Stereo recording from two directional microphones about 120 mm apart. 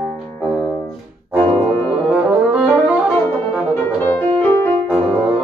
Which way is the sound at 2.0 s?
10° right (ahead or behind).